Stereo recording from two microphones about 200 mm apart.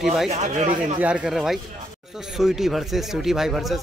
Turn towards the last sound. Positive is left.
turn(degrees=0)  # may be behind; listen again after turning